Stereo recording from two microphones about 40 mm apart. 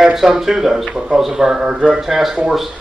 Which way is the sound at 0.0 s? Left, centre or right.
Centre.